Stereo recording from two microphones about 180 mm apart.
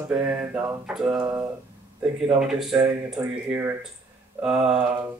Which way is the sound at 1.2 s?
20° right (ahead or behind).